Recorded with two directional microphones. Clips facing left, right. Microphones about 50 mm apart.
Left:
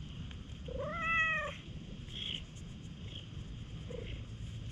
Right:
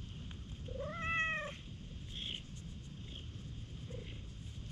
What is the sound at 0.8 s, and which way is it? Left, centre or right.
Cat, left.